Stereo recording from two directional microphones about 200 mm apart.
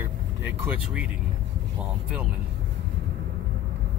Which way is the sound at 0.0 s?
10° right (ahead or behind).